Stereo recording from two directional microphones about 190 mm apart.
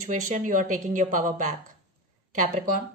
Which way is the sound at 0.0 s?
40° right (ahead or behind).